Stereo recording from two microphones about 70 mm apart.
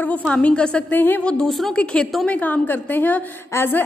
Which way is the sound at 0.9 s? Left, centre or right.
Left.